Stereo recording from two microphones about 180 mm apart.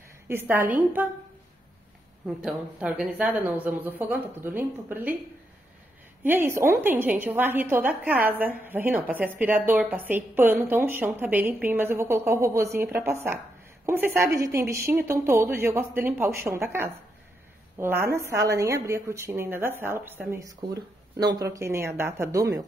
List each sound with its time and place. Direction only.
0.3 s a woman's voice: 10° right (ahead or behind)
2.2 s a woman's voice: 5° right (ahead or behind)
6.2 s a woman's voice: 15° right (ahead or behind)